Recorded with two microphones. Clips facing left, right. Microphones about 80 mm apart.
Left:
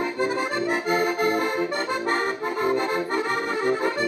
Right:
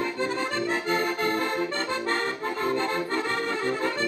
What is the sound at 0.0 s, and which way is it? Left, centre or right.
Accordion, centre.